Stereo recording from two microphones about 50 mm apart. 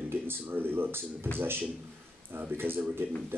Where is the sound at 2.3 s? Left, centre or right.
Right.